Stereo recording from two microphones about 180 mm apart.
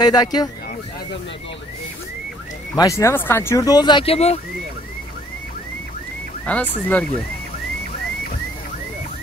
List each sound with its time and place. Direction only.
0.0 s speech: 20° left (ahead or behind)
2.7 s speech: 20° left (ahead or behind); by 4.4 s 35° left (ahead or behind)
6.4 s speech: 5° left (ahead or behind)